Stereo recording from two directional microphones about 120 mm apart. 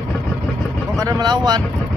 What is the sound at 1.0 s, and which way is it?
Speech, 30° right (ahead or behind).